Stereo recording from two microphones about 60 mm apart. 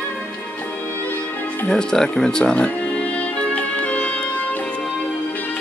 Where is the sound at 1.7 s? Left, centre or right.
Centre; by 5.6 s left.